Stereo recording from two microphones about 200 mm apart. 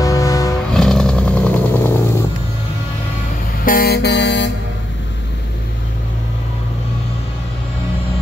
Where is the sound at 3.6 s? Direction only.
50° left (ahead or behind).